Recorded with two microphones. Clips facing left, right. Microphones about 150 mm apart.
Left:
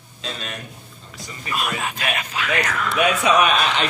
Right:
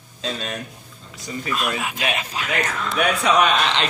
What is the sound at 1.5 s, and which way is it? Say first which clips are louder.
Speech: even; centre (ahead or behind).